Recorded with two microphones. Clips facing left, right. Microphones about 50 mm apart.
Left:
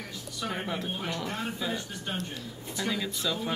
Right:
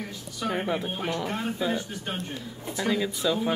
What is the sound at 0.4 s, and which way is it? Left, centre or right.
Speech, centre.